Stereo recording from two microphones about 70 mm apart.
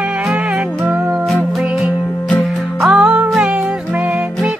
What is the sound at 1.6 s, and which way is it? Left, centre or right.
Music, centre.